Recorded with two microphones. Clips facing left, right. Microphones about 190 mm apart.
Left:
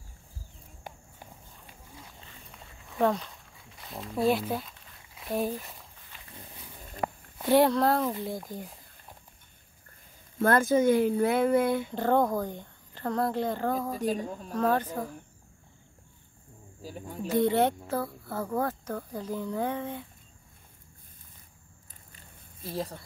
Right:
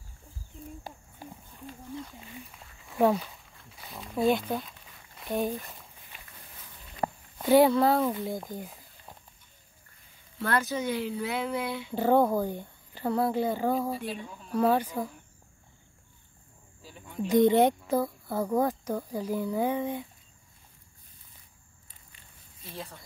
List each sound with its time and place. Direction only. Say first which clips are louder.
2.9 s a sound: right 2 dB; 5° right (ahead or behind)
6.1 s wild animals: even; 15° right (ahead or behind)
7.4 s speech: right 2 dB; centre (ahead or behind)
10.4 s speech: left 7 dB; 45° left (ahead or behind)
11.9 s speech: right 2 dB; 10° right (ahead or behind)
13.9 s speech: left 6 dB; 40° left (ahead or behind)
14.5 s speech: right 2 dB; 10° right (ahead or behind)
16.8 s speech: right 1 dB; 40° left (ahead or behind)
17.3 s speech: right 3 dB; 15° right (ahead or behind)
22.7 s speech: left 8 dB; 35° left (ahead or behind)